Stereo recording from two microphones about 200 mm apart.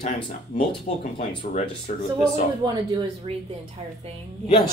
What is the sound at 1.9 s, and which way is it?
Speech, 40° left (ahead or behind).